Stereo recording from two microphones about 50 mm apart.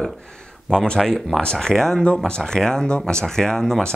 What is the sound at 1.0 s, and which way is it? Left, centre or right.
Speech, centre.